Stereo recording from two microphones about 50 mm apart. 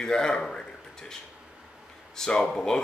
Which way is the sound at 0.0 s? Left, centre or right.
Centre.